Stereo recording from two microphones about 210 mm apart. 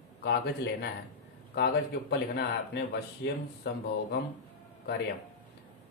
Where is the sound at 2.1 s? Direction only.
50° left (ahead or behind).